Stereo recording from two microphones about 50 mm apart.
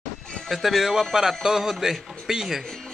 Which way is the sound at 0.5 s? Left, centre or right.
Centre.